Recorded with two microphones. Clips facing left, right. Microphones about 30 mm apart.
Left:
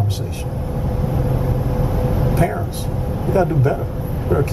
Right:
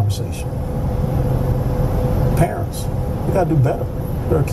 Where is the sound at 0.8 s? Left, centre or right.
Centre.